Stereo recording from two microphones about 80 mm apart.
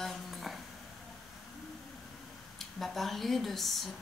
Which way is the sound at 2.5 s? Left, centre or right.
Centre.